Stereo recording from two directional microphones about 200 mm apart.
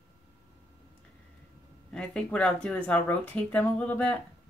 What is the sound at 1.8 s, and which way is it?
Speech, 5° left (ahead or behind).